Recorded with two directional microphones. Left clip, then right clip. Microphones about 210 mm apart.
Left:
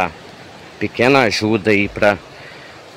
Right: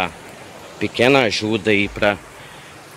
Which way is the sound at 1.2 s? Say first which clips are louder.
Left 3 dB; 15° left (ahead or behind).